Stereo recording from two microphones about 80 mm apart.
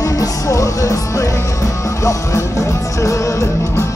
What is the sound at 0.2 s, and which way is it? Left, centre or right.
Music, left.